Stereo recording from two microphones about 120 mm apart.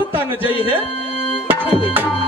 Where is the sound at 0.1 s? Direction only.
15° right (ahead or behind).